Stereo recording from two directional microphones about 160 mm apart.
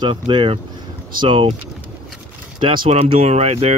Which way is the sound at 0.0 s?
30° right (ahead or behind).